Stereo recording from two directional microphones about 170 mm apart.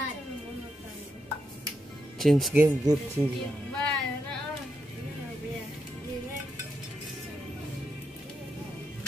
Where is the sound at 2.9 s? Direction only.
20° right (ahead or behind).